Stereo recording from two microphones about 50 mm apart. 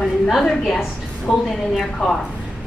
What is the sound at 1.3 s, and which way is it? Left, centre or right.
Speech, centre.